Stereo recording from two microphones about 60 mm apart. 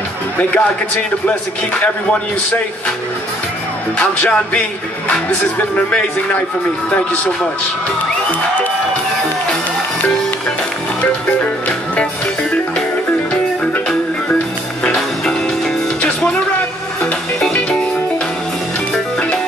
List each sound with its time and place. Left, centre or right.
0.4 s speech: left
4.0 s speech: left
5.6 s speech: left
11.9 s music: centre
16.0 s music: centre
17.5 s music: centre